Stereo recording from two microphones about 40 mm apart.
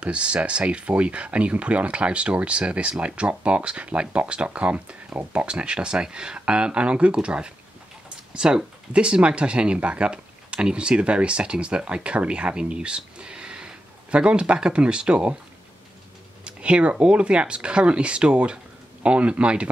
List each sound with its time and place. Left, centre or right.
0.0 s speech: right
16.4 s speech: right